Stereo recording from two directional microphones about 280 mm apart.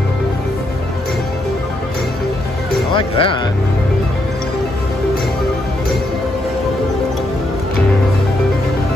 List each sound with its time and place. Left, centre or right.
2.9 s speech: centre